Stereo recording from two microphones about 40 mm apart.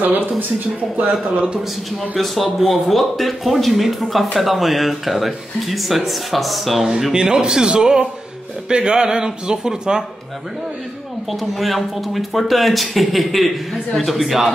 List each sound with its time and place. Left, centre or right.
0.0 s a woman's voice: right
2.1 s speech: centre
6.8 s speech: centre
11.2 s speech: centre